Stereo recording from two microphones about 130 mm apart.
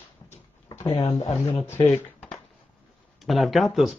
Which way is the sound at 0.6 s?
35° left (ahead or behind).